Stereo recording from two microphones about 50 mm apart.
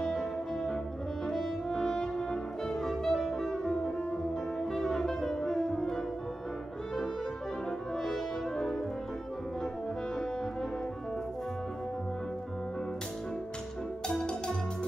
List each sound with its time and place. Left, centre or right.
0.0 s music: centre
8.0 s french horn: centre
14.0 s music: centre